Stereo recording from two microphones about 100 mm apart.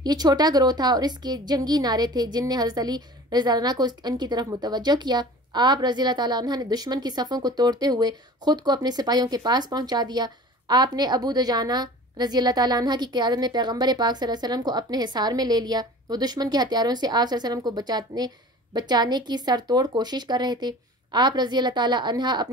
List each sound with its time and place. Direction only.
0.0 s a woman's voice: 40° right (ahead or behind)